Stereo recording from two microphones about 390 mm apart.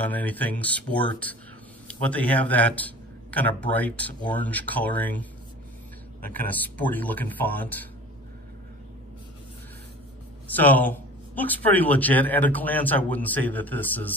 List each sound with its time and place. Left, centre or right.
0.0 s a man's voice: centre
6.2 s a man's voice: centre
10.5 s a man's voice: centre